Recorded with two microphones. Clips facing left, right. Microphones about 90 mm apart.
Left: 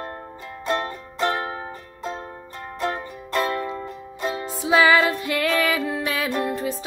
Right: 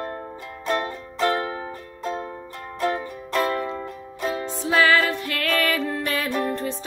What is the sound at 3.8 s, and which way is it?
Music, centre (ahead or behind).